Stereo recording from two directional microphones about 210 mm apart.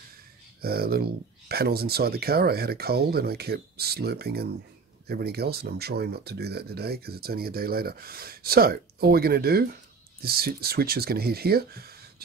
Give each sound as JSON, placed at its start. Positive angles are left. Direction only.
{"t": 0.6, "sound": "speech", "side_deg": -45}